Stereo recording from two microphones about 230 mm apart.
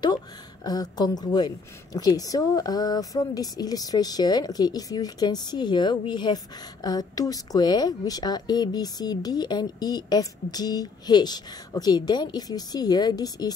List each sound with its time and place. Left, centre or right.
0.7 s a woman's voice: centre